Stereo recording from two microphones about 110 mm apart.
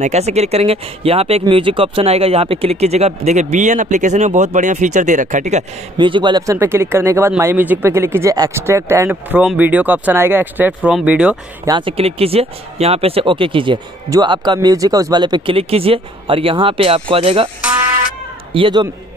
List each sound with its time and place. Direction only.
0.0 s speech: 85° right
5.9 s speech: 50° right (ahead or behind)
6.4 s speech: 25° right (ahead or behind)
9.1 s speech: 15° right (ahead or behind)
10.9 s speech: 5° right (ahead or behind)
11.8 s speech: 65° right (ahead or behind)
18.5 s speech: 50° right (ahead or behind)